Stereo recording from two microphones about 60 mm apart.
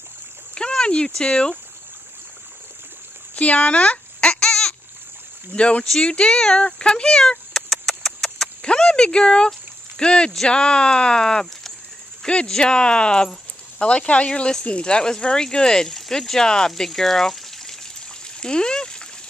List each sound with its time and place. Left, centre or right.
0.6 s speech: centre
3.3 s baby cry: left
5.5 s speech: left
5.9 s a sound: centre
8.6 s speech: centre
18.2 s a sound: centre